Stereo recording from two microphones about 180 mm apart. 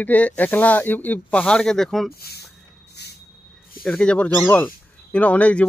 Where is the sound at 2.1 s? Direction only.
60° left (ahead or behind).